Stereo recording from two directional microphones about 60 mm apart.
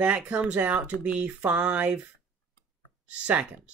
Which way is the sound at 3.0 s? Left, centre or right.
Right.